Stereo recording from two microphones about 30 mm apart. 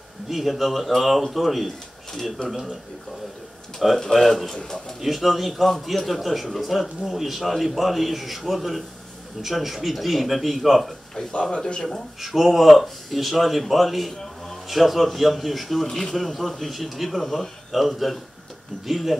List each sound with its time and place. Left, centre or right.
0.3 s a man's voice: centre
2.4 s speech: left
4.1 s a man's voice: centre
5.0 s a man's voice: centre
11.4 s speech: centre
12.2 s a man's voice: centre
14.1 s a sound: centre
14.7 s a man's voice: centre
15.9 s a man's voice: centre
17.2 s a man's voice: centre
17.6 s a man's voice: centre